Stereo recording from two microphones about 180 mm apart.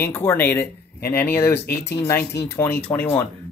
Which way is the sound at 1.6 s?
60° left (ahead or behind).